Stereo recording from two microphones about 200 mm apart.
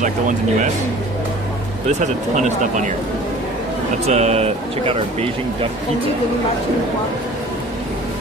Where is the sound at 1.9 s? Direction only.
35° right (ahead or behind).